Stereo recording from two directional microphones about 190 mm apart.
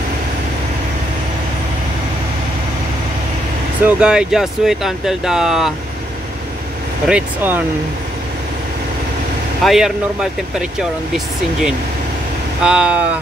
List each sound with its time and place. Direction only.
3.8 s speech: 5° right (ahead or behind)
7.1 s speech: 10° right (ahead or behind)
9.6 s speech: centre (ahead or behind)